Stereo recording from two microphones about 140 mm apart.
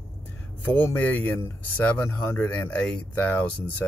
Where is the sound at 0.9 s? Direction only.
10° left (ahead or behind).